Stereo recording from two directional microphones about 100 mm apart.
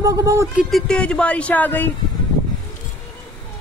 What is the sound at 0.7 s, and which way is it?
Speech, 10° left (ahead or behind).